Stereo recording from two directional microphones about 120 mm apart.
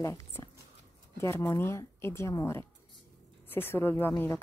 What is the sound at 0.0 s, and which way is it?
Speech, 25° left (ahead or behind).